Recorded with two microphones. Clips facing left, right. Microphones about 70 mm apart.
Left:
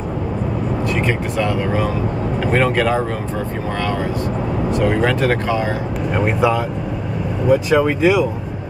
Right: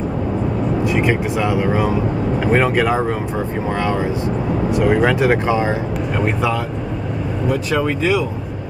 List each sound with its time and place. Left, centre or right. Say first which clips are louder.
0.8 s speech: right 2 dB; centre
4.6 s speech: right 2 dB; centre
6.1 s speech: left 3 dB; centre